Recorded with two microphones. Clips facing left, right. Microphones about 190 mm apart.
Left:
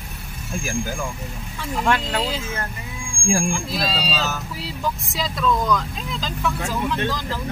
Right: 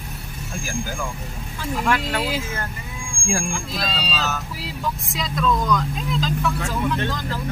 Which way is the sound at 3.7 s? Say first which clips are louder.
Left 2 dB; centre (ahead or behind).